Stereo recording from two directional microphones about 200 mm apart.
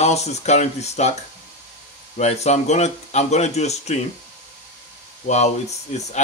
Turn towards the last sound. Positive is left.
turn(degrees=35)  # may be behind; listen again after turning